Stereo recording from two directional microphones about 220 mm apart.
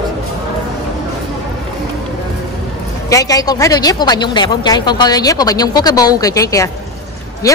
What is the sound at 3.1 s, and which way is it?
A woman's voice, 15° left (ahead or behind).